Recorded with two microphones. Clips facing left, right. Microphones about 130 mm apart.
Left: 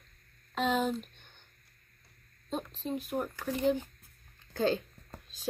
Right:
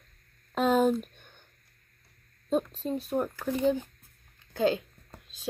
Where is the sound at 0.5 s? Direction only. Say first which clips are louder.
Right 6 dB; 45° right (ahead or behind).